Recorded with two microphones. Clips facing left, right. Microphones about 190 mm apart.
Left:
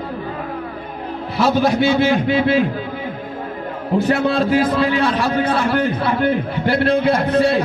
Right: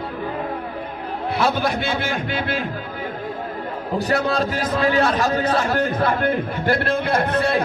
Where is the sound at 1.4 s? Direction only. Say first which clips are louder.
Left 7 dB; 55° right (ahead or behind).